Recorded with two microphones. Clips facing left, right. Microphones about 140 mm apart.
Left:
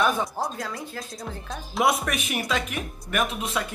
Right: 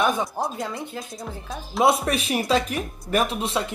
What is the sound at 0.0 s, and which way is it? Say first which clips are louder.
Speech: right 1 dB; 20° right (ahead or behind).